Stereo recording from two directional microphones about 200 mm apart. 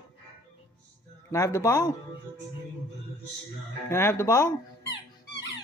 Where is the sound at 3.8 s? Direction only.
10° left (ahead or behind).